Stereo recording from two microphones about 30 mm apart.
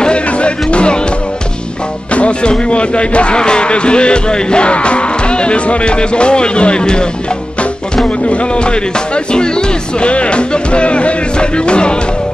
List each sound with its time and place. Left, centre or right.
0.0 s music: left
2.1 s music: left
2.7 s speech: left
8.3 s speech: left